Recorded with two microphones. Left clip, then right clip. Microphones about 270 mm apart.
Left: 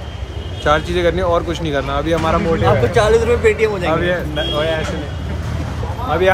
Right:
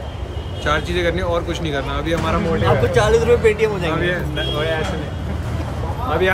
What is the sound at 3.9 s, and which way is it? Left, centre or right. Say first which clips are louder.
Speech: left 4 dB; centre.